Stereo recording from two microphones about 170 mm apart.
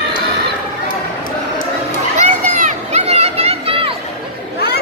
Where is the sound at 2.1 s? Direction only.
45° right (ahead or behind).